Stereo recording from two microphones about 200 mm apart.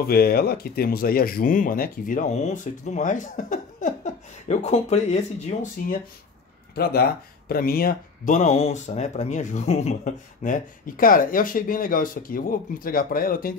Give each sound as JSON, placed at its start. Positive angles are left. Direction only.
{"t": 0.0, "sound": "speech", "side_deg": 50}
{"t": 6.7, "sound": "speech", "side_deg": 50}